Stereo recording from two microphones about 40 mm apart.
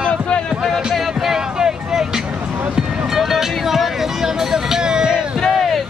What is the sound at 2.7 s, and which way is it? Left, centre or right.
Music, centre.